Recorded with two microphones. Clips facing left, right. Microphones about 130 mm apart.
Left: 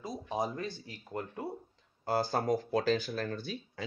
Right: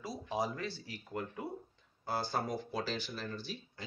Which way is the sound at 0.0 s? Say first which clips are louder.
Left 2 dB; 20° left (ahead or behind).